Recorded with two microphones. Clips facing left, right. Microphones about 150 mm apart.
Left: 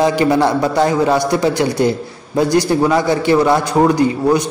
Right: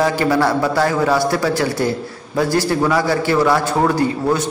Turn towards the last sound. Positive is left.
turn(degrees=15)  # may be behind; listen again after turning